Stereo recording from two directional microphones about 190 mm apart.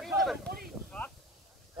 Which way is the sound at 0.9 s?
10° left (ahead or behind).